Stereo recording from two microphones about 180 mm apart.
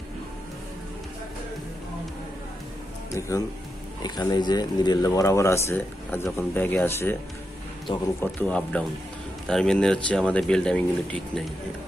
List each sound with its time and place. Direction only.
3.2 s speech: 15° left (ahead or behind)
8.2 s speech: 10° left (ahead or behind)